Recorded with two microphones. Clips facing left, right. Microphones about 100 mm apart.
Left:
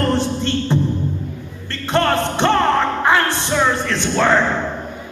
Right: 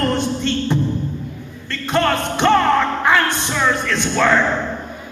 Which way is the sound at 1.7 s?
30° left (ahead or behind).